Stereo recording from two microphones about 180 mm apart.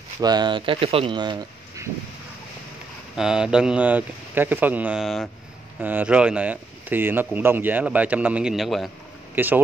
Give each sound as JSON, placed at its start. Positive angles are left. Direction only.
{"t": 0.2, "sound": "speech", "side_deg": -25}
{"t": 3.2, "sound": "a man's voice", "side_deg": -5}
{"t": 9.3, "sound": "speech", "side_deg": -10}